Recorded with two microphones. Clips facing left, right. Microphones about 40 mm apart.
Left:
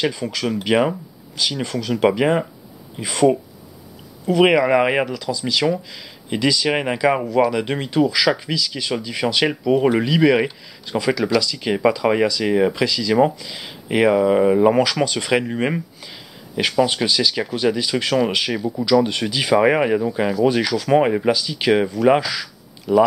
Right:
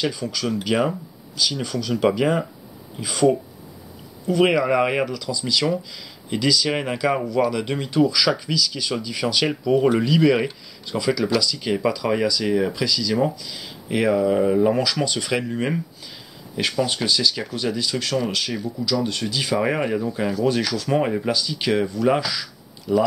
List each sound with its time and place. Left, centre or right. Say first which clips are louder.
0.0 s speech: left 3 dB; centre
4.3 s speech: left 4 dB; left
5.0 s speech: left 1 dB; centre
5.3 s speech: left 3 dB; left
16.5 s speech: left 5 dB; centre
21.3 s speech: left 5 dB; centre